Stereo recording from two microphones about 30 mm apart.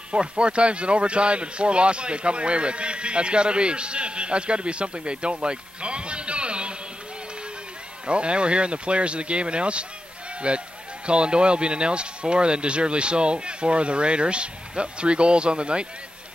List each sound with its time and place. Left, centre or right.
0.1 s speech: right
8.1 s speech: right